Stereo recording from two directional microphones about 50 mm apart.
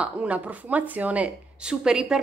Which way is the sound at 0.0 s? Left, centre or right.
Right.